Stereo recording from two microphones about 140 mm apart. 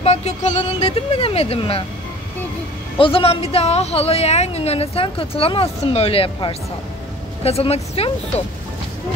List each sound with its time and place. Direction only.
0.0 s a woman's voice: 50° left (ahead or behind)
3.0 s a woman's voice: 40° left (ahead or behind)